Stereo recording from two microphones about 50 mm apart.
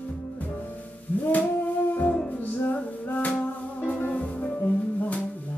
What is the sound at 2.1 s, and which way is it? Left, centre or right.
Music, centre.